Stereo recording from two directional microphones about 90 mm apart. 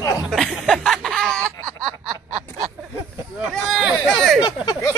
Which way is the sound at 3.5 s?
Centre (ahead or behind).